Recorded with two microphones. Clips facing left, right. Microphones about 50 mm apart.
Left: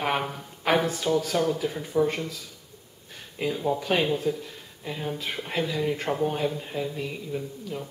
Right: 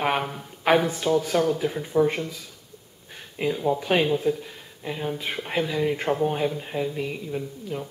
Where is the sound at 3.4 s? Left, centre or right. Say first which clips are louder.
Right 2 dB; centre.